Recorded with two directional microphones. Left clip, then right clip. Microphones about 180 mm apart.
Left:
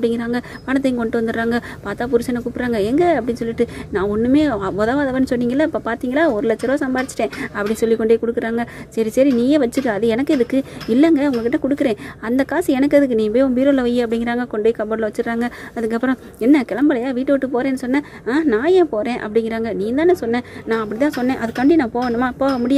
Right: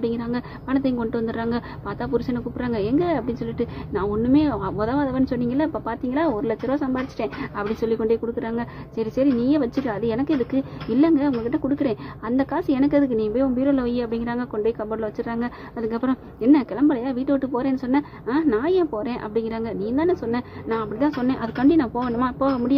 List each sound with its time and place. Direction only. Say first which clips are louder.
0.0 s a woman's voice: left 6 dB; 30° left (ahead or behind)